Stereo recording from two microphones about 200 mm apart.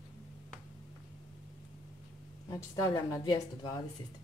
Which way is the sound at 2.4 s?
20° left (ahead or behind).